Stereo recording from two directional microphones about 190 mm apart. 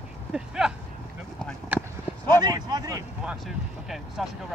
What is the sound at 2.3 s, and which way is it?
Speech, 20° right (ahead or behind).